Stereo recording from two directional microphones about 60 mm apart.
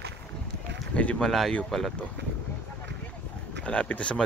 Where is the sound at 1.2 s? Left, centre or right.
Centre.